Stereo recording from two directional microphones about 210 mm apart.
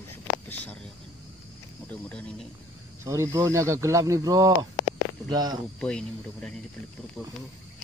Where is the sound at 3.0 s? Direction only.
15° right (ahead or behind).